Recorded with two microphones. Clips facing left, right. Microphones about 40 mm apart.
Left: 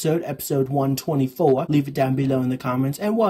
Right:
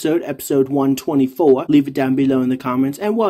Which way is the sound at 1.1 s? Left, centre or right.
Right.